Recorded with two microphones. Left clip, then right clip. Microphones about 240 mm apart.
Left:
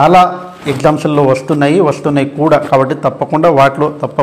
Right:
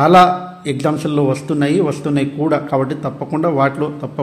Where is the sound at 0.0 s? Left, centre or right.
Centre.